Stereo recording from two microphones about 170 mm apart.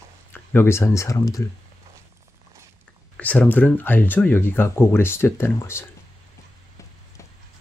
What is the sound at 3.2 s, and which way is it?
Speech, 10° left (ahead or behind).